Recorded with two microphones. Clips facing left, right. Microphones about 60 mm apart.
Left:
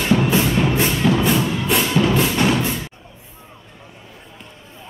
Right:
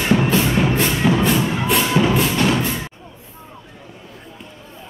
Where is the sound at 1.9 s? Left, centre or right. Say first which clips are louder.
Right 1 dB; centre.